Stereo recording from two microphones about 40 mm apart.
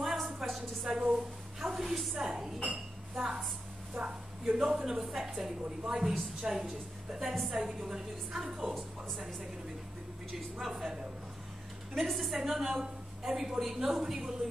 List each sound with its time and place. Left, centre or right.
0.0 s a sound: centre
1.1 s a woman's voice: centre
2.7 s dishes: centre
3.9 s a sound: right
5.0 s a woman's voice: centre
10.6 s a woman's voice: centre